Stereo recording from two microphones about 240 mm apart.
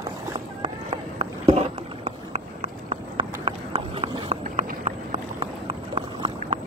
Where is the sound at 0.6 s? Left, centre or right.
Right.